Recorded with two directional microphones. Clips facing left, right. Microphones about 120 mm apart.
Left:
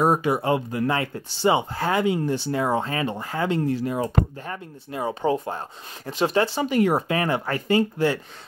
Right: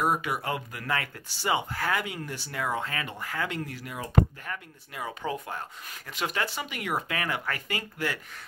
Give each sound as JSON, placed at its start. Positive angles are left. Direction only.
{"t": 0.0, "sound": "speech", "side_deg": 30}